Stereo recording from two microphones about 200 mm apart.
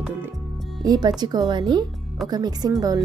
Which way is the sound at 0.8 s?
20° right (ahead or behind).